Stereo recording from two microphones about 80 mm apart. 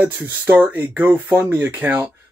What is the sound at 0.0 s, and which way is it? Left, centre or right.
Speech, right.